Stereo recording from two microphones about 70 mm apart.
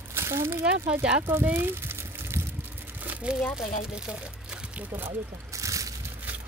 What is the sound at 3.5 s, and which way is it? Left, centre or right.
Speech, centre.